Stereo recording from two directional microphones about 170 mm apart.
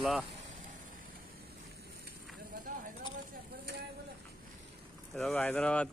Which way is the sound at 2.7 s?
50° right (ahead or behind).